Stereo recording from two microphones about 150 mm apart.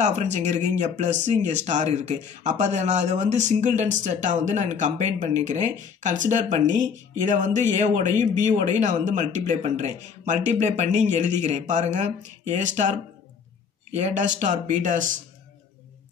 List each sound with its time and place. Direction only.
0.0 s speech: 50° right (ahead or behind)
13.9 s speech: 55° right (ahead or behind)